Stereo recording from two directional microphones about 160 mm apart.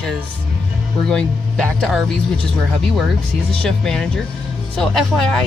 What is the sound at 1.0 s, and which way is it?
Speech, 5° left (ahead or behind).